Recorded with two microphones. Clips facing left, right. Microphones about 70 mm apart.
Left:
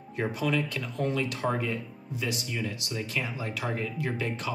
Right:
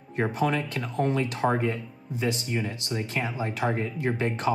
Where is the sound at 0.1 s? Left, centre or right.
Right.